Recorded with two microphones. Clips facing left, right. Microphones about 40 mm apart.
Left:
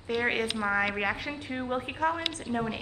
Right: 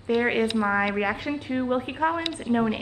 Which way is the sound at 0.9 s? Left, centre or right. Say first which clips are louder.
Right 5 dB; centre.